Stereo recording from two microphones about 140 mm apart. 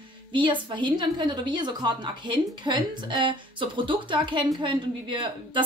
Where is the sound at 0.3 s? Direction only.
35° right (ahead or behind).